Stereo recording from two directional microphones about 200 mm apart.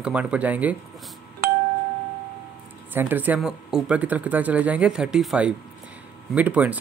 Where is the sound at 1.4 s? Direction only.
50° right (ahead or behind).